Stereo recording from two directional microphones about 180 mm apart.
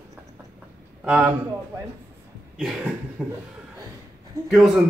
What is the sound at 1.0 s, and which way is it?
Speech, 5° right (ahead or behind).